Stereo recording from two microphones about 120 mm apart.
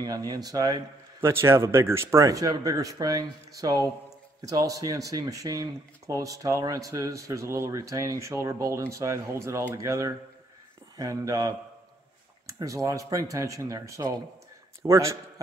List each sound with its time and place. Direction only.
0.0 s speech: 30° right (ahead or behind)
1.2 s a man's voice: 20° right (ahead or behind)